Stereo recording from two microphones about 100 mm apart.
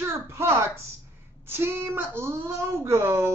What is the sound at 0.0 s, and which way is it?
Speech, 25° right (ahead or behind).